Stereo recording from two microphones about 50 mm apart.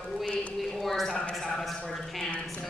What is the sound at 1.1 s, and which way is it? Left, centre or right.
Speech, centre.